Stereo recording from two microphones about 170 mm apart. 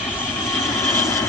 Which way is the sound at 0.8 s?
15° left (ahead or behind).